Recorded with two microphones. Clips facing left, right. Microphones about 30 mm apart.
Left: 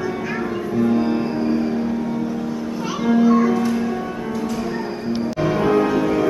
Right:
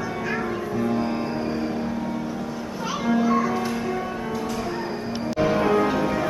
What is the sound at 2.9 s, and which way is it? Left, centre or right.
Music, centre.